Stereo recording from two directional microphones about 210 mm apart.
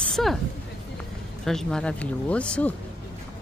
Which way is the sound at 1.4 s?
5° left (ahead or behind).